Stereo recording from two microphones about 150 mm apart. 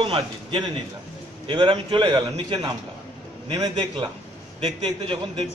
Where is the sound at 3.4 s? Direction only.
30° right (ahead or behind).